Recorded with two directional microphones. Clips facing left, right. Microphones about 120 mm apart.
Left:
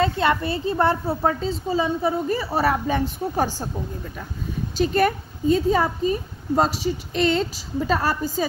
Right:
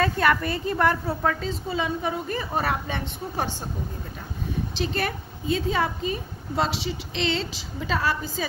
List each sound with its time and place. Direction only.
0.0 s a woman's voice: 25° left (ahead or behind)
4.7 s a woman's voice: 45° left (ahead or behind)